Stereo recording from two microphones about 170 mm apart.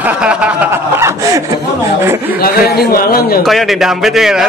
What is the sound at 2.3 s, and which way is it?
A man's voice, 60° left (ahead or behind).